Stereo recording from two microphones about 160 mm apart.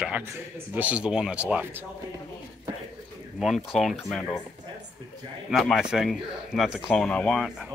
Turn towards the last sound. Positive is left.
turn(degrees=0)  # may be behind; listen again after turning